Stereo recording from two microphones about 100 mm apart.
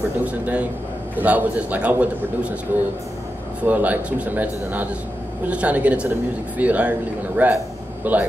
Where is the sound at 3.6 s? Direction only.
15° right (ahead or behind).